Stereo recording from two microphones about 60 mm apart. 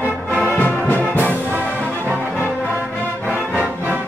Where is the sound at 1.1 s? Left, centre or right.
Left.